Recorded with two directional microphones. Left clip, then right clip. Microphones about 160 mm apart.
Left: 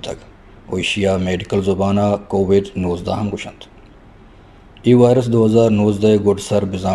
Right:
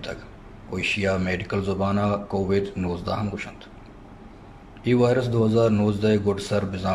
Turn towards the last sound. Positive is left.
turn(degrees=20)  # may be behind; listen again after turning